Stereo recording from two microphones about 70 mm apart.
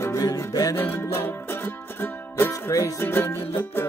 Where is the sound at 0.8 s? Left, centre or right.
Left.